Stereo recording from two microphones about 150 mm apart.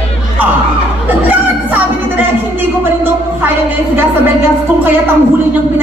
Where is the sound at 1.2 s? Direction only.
10° right (ahead or behind).